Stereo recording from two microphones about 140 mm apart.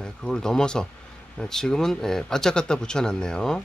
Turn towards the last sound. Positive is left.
turn(degrees=5)  # may be behind; listen again after turning